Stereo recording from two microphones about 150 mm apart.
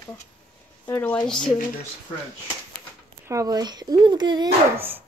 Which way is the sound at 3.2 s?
20° right (ahead or behind).